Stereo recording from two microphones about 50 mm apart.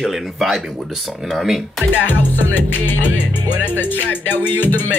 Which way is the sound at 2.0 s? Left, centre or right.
Left.